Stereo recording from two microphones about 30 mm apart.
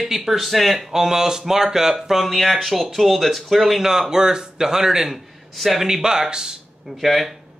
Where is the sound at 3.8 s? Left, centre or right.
Centre.